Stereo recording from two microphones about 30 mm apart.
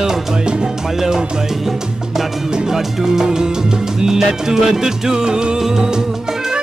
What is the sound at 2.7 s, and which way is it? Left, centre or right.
Music, centre.